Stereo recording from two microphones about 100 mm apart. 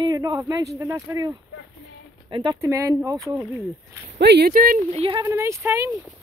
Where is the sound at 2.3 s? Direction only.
55° right (ahead or behind).